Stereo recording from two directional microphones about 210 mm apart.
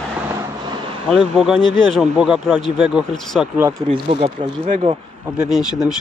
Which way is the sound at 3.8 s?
30° right (ahead or behind).